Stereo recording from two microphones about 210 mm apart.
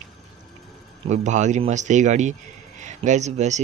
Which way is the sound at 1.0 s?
35° right (ahead or behind).